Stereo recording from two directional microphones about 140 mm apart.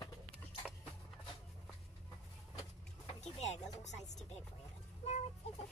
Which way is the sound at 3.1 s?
55° left (ahead or behind).